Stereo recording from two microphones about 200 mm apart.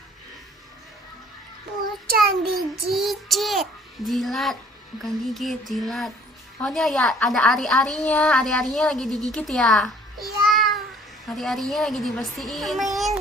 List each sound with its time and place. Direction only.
2.0 s child singing: 50° right (ahead or behind)
2.9 s child singing: centre (ahead or behind)
5.0 s a woman's voice: centre (ahead or behind)